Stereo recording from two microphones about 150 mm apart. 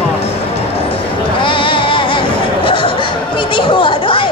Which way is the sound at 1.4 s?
35° left (ahead or behind).